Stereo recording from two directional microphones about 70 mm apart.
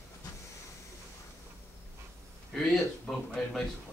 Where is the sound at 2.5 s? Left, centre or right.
Centre.